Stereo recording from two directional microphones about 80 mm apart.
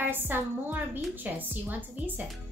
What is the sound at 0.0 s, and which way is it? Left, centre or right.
A woman's voice, right.